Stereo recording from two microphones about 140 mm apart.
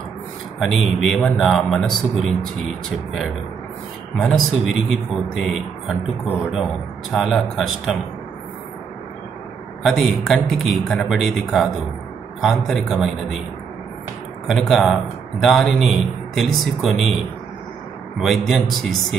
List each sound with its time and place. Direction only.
0.6 s a man's voice: centre (ahead or behind)
4.2 s a man's voice: centre (ahead or behind)
7.1 s a man's voice: centre (ahead or behind)
9.8 s a man's voice: centre (ahead or behind)
14.5 s a man's voice: centre (ahead or behind)
18.2 s a man's voice: centre (ahead or behind)